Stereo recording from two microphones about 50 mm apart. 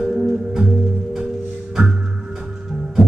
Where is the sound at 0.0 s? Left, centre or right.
Centre.